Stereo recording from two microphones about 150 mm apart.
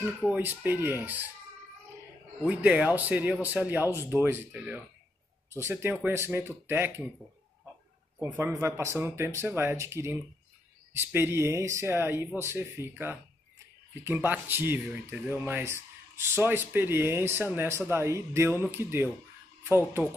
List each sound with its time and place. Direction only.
0.3 s speech: 10° right (ahead or behind)
2.4 s speech: 10° right (ahead or behind)
8.2 s speech: 15° right (ahead or behind)